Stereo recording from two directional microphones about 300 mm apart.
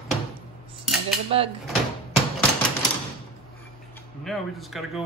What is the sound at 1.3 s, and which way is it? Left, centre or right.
Speech, centre.